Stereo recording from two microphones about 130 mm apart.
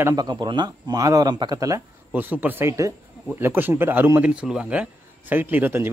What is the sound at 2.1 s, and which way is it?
Speech, 15° right (ahead or behind).